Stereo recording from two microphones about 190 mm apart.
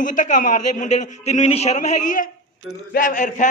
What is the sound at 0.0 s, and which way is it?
A woman's voice, 40° left (ahead or behind).